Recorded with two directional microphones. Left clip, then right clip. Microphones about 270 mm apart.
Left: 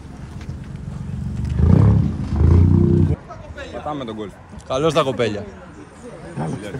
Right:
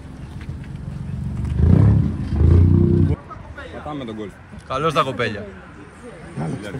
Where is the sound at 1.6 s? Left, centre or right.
Centre.